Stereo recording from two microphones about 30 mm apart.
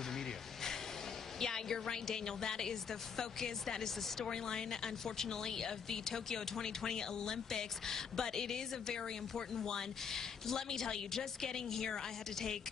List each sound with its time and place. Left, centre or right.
1.4 s a woman's voice: centre